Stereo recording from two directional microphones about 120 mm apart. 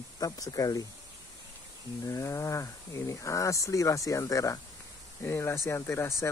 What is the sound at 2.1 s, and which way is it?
Speech, 25° left (ahead or behind).